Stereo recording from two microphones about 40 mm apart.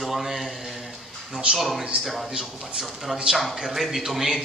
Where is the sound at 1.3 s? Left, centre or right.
Right.